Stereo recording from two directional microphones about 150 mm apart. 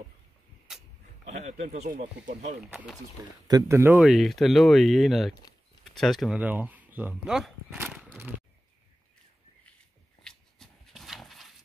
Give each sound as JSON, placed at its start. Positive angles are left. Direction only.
{"t": 1.2, "sound": "speech", "side_deg": -50}
{"t": 2.6, "sound": "speech", "side_deg": -5}
{"t": 3.4, "sound": "speech", "side_deg": -20}
{"t": 4.0, "sound": "speech", "side_deg": 0}
{"t": 10.2, "sound": "dog", "side_deg": 0}